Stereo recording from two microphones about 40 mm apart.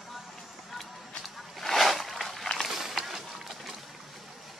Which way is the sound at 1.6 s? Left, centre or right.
Centre.